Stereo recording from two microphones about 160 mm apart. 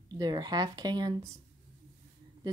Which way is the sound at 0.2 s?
25° right (ahead or behind).